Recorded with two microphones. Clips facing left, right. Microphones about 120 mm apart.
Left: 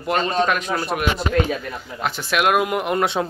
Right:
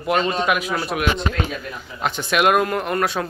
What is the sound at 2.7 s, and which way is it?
Speech, 15° left (ahead or behind).